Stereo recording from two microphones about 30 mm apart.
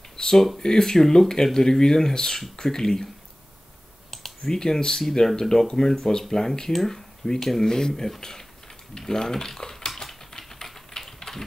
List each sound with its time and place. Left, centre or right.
0.1 s a sound: left
0.6 s speech: left
4.4 s speech: left
6.7 s speech: centre
7.6 s speech: left
7.9 s speech: centre
10.3 s typing: centre